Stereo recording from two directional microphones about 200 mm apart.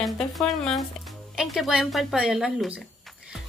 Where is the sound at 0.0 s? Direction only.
Centre (ahead or behind).